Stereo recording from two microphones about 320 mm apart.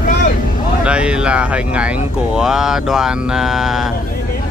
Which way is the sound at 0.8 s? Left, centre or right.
Centre.